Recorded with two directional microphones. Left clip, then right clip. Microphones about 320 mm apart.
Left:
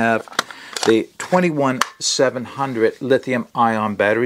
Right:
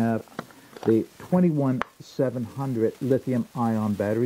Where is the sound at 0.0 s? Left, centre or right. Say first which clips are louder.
Left 10 dB; centre.